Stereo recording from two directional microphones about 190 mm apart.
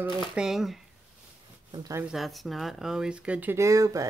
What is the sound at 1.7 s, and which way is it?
Speech, 20° right (ahead or behind).